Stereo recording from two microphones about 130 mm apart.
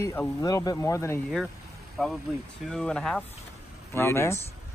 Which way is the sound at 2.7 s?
5° left (ahead or behind).